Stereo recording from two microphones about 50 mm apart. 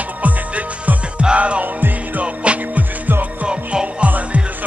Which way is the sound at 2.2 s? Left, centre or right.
Right.